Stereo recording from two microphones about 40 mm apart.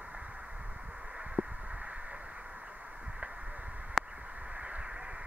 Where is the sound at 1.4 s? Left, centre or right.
Right.